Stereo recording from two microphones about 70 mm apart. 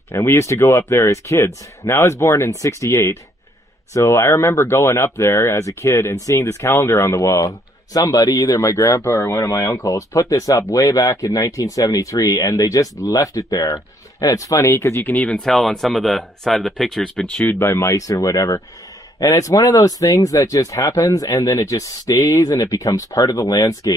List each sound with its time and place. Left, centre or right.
0.1 s speech: left
9.5 s speech: left
15.2 s speech: centre
17.4 s speech: left